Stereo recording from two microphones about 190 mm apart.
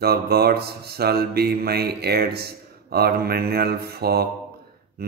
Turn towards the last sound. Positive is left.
turn(degrees=-55)  # may be behind; listen again after turning